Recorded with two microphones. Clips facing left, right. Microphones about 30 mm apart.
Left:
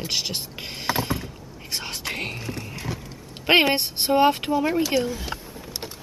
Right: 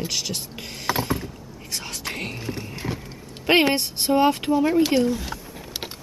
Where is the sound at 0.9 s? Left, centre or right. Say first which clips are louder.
Right 1 dB; centre.